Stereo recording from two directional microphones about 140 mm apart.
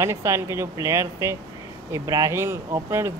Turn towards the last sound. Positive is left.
turn(degrees=-20)  # may be behind; listen again after turning